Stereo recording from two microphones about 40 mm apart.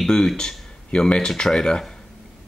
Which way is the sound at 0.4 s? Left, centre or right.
Left.